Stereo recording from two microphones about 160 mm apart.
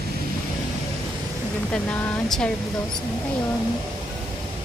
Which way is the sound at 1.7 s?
10° left (ahead or behind).